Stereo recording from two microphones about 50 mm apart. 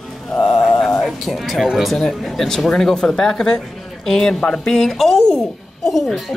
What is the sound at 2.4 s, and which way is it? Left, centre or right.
Speech, centre.